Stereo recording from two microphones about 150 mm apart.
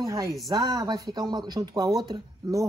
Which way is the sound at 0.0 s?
20° right (ahead or behind).